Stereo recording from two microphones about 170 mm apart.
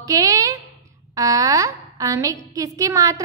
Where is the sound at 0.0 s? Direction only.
20° right (ahead or behind).